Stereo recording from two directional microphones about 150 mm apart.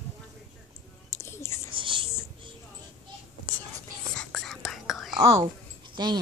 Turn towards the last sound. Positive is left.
turn(degrees=-30)  # may be behind; listen again after turning